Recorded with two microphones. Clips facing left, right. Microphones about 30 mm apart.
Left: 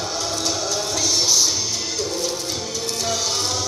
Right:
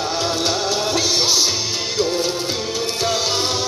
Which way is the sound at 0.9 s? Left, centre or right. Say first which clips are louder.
Even; right.